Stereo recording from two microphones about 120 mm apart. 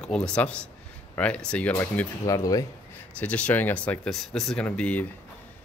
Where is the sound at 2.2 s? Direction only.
30° left (ahead or behind).